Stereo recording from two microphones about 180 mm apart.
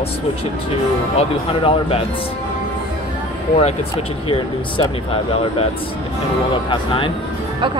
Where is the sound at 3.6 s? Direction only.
30° left (ahead or behind).